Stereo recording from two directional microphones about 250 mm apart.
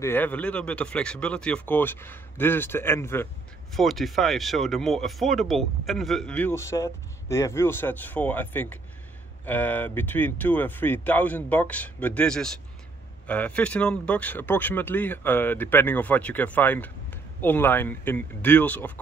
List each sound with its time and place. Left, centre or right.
0.0 s speech: centre